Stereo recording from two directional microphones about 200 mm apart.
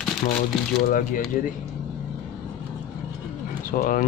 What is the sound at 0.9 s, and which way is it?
Speech, 40° left (ahead or behind).